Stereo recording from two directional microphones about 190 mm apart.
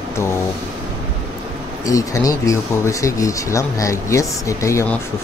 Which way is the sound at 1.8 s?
15° left (ahead or behind).